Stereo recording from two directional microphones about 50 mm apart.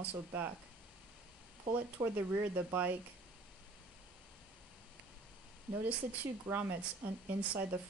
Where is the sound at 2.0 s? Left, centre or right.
Right.